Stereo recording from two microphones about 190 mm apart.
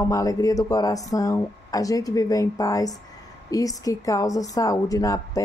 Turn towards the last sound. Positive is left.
turn(degrees=20)  # may be behind; listen again after turning